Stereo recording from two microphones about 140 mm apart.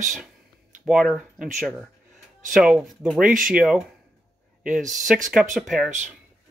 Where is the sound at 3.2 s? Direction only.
70° right (ahead or behind).